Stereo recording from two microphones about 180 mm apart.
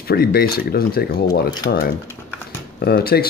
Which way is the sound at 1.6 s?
70° left (ahead or behind).